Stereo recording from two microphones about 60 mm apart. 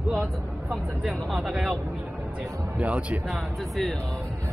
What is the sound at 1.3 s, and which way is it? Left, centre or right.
Speech, centre.